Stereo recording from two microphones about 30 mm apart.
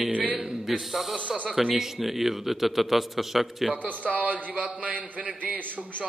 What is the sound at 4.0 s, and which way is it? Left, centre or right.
A man's voice, right.